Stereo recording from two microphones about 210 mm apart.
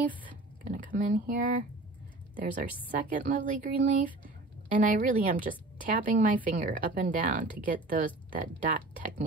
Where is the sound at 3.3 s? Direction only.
40° right (ahead or behind).